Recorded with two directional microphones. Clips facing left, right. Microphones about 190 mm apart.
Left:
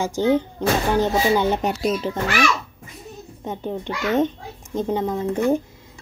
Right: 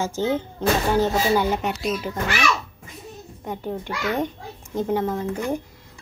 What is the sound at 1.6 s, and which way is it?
Speech, 35° left (ahead or behind).